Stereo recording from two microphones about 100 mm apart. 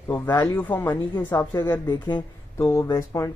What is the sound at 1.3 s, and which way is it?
Speech, 30° left (ahead or behind).